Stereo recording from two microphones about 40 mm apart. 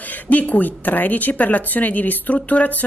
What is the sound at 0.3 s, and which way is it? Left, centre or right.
Speech, left.